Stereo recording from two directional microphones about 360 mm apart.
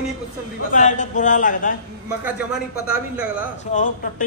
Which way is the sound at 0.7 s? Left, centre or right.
Left.